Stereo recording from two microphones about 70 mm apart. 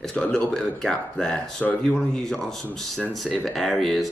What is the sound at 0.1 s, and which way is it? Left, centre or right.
Speech, centre.